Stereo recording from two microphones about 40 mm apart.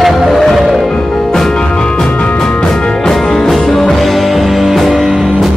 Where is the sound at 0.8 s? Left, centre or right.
Centre.